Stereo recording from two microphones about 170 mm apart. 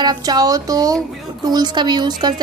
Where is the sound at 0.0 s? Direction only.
25° right (ahead or behind).